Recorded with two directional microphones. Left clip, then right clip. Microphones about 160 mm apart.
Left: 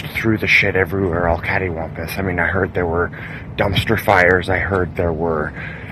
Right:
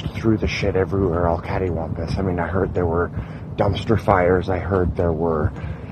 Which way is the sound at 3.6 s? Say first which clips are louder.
Left 3 dB; 20° right (ahead or behind).